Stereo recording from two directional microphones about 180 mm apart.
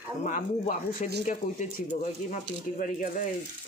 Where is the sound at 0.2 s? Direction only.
45° left (ahead or behind).